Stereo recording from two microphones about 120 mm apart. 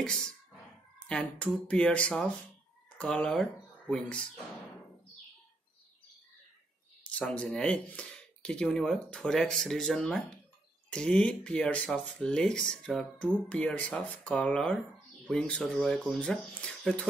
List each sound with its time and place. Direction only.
0.0 s speech: 5° left (ahead or behind)
7.1 s speech: 10° left (ahead or behind)